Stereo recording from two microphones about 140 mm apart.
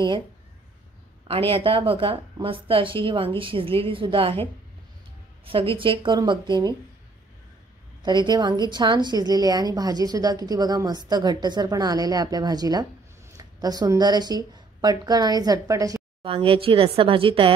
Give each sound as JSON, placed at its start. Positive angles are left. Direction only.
{"t": 1.2, "sound": "a woman's voice", "side_deg": -40}
{"t": 8.0, "sound": "a woman's voice", "side_deg": -30}
{"t": 16.2, "sound": "a woman's voice", "side_deg": -40}